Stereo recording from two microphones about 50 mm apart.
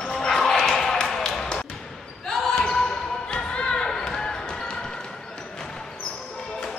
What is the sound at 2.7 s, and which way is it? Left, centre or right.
Basketball bounce, centre.